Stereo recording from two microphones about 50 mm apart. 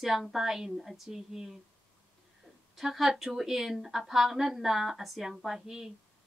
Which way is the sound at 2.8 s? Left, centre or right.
Centre.